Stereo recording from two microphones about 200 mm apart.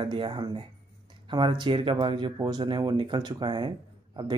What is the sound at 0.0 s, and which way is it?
Speech, 25° right (ahead or behind).